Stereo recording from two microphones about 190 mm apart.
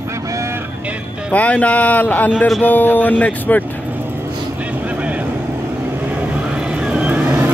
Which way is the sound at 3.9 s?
10° right (ahead or behind).